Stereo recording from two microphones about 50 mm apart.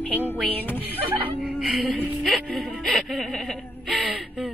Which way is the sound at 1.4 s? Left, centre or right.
Centre.